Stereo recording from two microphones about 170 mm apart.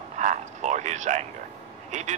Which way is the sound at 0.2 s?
45° right (ahead or behind).